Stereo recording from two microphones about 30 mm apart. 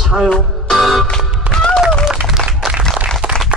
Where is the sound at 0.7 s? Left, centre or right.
Centre.